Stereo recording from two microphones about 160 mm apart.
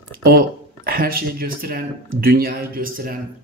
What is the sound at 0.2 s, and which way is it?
Speech, 65° right (ahead or behind).